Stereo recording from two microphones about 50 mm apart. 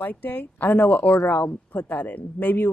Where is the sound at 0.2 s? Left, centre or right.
Left.